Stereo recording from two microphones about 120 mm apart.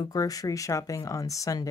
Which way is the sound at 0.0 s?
30° left (ahead or behind).